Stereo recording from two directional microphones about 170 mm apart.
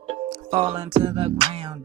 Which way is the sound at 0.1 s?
35° right (ahead or behind).